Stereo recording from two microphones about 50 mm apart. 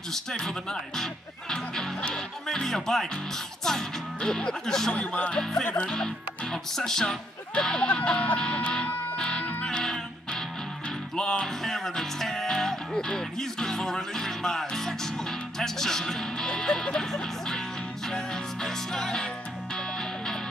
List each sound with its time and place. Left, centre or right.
0.1 s speech: centre
4.9 s music: left
5.3 s speech: centre
7.9 s music: centre
8.4 s speech: centre
9.1 s music: centre